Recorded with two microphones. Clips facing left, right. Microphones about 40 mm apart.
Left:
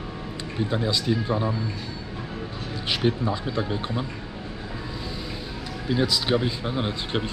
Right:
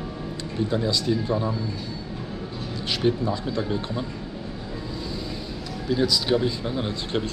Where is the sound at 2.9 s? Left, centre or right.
Centre.